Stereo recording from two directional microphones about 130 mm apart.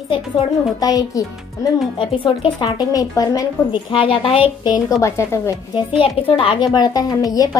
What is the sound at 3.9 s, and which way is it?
A woman's voice, 45° left (ahead or behind).